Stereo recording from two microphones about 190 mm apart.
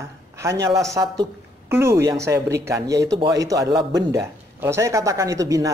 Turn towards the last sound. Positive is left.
turn(degrees=-15)  # may be behind; listen again after turning